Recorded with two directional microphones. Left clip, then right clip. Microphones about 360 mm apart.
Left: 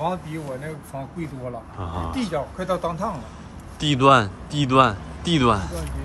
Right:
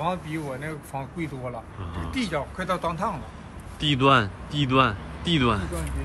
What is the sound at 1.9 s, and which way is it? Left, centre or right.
Speech, centre.